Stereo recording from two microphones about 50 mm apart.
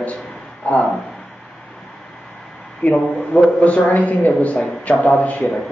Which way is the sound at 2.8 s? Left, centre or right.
Left.